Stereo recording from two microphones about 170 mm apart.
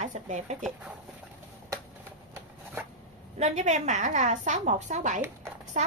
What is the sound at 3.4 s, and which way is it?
Speech, 45° right (ahead or behind).